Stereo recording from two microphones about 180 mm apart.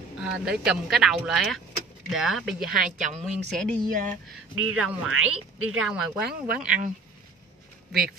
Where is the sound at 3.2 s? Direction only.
Centre (ahead or behind).